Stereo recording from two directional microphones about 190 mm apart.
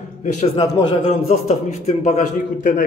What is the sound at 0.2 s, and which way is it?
Speech, 40° left (ahead or behind).